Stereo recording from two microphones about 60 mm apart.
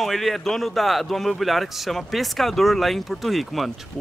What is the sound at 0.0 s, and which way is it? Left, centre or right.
Speech, centre.